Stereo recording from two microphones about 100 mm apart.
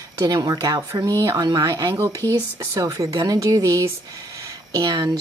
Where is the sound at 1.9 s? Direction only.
30° right (ahead or behind).